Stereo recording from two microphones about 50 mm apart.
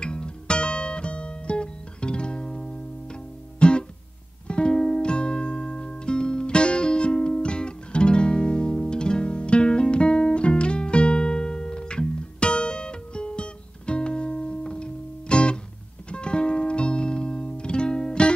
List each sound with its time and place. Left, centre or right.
0.0 s music: centre